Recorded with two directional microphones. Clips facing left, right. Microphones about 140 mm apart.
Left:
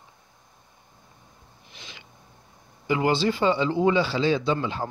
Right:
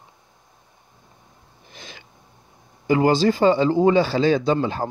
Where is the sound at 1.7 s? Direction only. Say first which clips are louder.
Right 5 dB; 45° right (ahead or behind).